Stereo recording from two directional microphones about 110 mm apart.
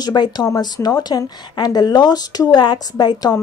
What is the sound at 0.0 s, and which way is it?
A woman's voice, 40° left (ahead or behind).